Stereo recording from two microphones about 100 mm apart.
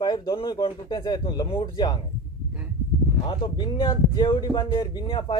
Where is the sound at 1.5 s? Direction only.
65° left (ahead or behind).